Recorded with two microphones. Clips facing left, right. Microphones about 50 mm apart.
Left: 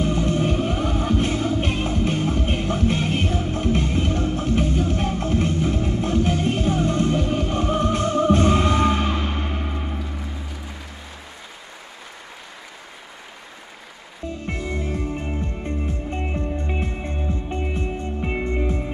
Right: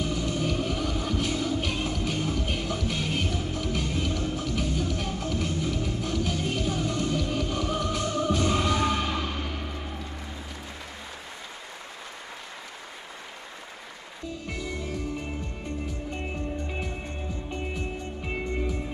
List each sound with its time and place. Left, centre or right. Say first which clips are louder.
0.0 s music: left 7 dB; left
14.4 s music: left 6 dB; left
16.2 s music: left 6 dB; left
17.7 s music: left 7 dB; left